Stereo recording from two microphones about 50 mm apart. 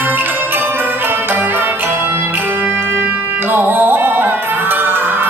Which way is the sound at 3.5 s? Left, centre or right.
Right.